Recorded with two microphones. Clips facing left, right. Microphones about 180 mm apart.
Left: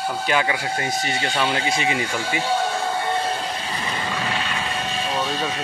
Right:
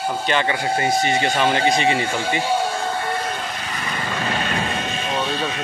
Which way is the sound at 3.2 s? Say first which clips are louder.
Left 2 dB; 30° left (ahead or behind).